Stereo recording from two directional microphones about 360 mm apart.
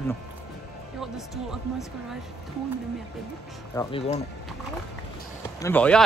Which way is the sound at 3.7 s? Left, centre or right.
Centre.